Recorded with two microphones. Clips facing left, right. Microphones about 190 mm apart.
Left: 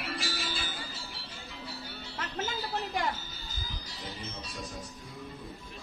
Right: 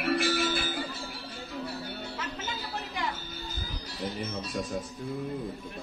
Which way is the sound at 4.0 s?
55° right (ahead or behind).